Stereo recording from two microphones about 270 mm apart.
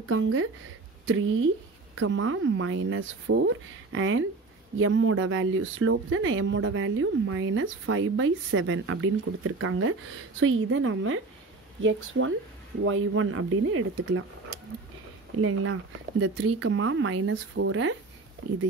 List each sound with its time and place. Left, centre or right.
0.1 s speech: right
15.3 s speech: right